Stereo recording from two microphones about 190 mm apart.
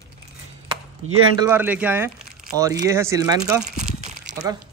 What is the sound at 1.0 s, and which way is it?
Speech, 90° right.